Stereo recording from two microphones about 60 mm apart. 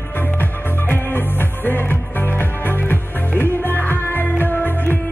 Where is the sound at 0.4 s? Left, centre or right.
Left.